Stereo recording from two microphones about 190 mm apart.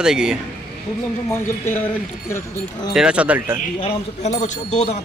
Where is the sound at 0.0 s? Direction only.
5° right (ahead or behind).